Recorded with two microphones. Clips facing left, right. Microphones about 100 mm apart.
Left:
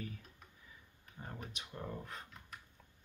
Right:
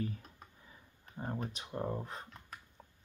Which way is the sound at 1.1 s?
35° right (ahead or behind).